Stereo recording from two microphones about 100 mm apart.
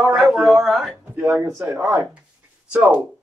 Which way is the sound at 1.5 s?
30° right (ahead or behind).